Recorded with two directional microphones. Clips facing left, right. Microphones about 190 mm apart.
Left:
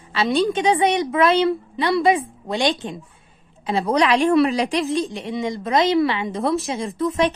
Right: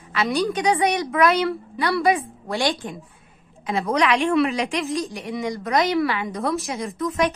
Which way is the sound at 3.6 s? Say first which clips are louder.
Left 2 dB; 30° left (ahead or behind).